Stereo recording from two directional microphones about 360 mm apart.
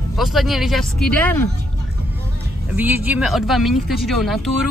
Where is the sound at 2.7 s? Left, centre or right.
Centre.